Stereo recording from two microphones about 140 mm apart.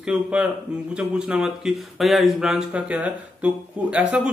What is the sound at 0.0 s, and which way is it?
Speech, 5° right (ahead or behind).